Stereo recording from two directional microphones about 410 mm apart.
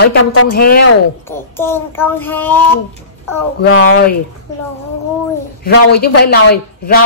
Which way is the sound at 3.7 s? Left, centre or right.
Left.